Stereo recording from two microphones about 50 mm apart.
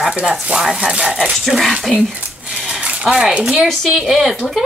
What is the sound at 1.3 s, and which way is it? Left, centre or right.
Speech, centre.